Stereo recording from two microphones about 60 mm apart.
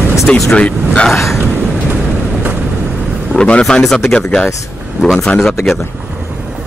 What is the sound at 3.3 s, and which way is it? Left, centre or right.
Speech, left.